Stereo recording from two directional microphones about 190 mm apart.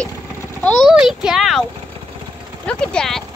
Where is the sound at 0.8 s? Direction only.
Centre (ahead or behind).